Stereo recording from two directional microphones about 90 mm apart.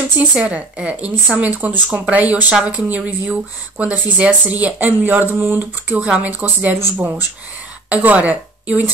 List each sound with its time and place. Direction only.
0.2 s speech: 10° right (ahead or behind)
5.9 s speech: 15° right (ahead or behind)